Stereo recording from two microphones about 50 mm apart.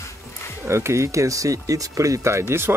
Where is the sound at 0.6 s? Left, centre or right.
Right.